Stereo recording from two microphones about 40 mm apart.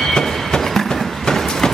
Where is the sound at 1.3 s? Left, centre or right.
Centre.